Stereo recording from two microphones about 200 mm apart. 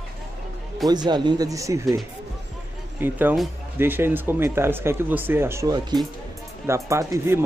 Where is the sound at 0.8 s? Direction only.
20° right (ahead or behind).